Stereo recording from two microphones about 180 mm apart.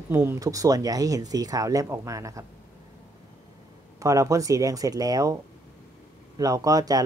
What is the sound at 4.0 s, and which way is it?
Speech, 20° right (ahead or behind).